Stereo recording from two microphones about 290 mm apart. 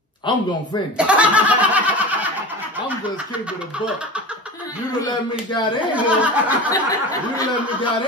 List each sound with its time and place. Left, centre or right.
0.3 s speech: centre
0.9 s a sound: centre
5.9 s speech: centre
6.7 s speech: centre